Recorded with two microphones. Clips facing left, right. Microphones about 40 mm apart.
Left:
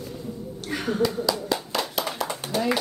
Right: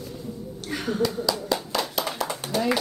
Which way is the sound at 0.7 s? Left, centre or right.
Left.